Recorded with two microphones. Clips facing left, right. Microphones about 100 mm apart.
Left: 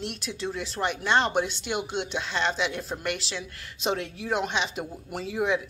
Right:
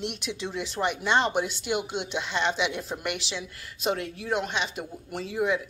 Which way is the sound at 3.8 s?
Centre (ahead or behind).